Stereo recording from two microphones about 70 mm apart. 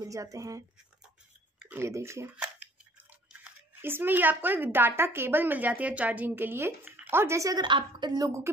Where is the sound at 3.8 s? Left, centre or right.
Right.